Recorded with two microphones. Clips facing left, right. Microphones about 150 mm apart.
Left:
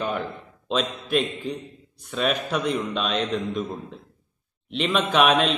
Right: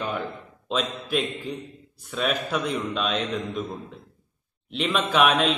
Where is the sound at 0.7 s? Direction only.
Centre (ahead or behind).